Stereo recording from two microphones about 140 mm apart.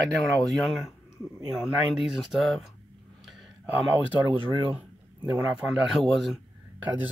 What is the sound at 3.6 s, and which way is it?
Speech, 15° right (ahead or behind).